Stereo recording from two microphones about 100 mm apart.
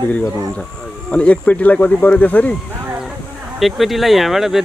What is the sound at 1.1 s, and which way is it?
Speech, 15° left (ahead or behind).